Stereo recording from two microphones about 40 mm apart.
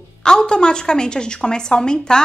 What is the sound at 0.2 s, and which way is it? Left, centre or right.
A woman's voice, centre.